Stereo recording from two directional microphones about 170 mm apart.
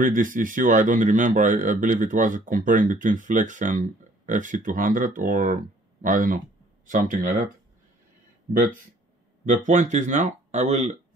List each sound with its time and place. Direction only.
0.0 s speech: 50° right (ahead or behind)
8.5 s speech: 55° right (ahead or behind)